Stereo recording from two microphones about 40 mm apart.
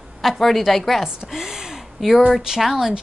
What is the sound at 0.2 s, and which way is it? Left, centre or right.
Speech, centre.